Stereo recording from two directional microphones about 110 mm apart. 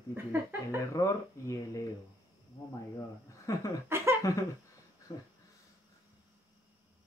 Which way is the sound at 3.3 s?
30° left (ahead or behind).